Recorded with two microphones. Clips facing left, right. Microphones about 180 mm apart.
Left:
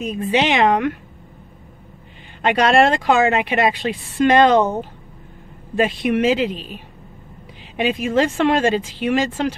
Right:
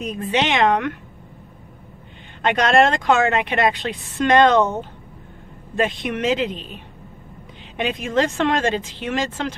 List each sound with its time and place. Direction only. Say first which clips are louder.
0.0 s speech: left 3 dB; 5° left (ahead or behind)
2.4 s speech: left 2 dB; 10° left (ahead or behind)
5.8 s speech: left 4 dB; 10° left (ahead or behind)